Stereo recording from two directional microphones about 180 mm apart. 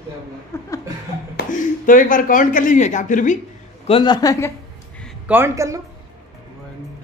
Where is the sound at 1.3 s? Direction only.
50° left (ahead or behind).